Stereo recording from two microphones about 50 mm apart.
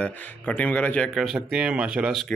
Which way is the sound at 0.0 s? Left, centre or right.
Left.